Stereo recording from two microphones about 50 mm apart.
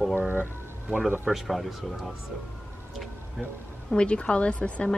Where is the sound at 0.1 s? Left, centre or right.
Right.